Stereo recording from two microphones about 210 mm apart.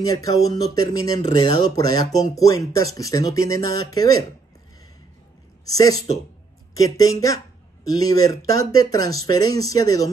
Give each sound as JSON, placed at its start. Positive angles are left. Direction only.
{"t": 0.0, "sound": "speech", "side_deg": 15}
{"t": 5.7, "sound": "speech", "side_deg": 15}